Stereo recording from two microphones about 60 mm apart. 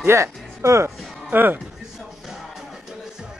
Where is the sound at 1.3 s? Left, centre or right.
Right.